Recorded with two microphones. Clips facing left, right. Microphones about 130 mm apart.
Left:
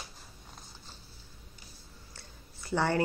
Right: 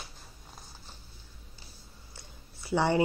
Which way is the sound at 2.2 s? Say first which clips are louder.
Right 2 dB; 15° right (ahead or behind).